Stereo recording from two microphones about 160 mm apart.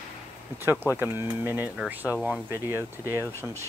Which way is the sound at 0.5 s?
15° right (ahead or behind).